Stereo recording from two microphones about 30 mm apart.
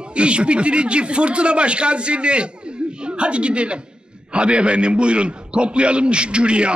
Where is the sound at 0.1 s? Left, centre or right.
Right.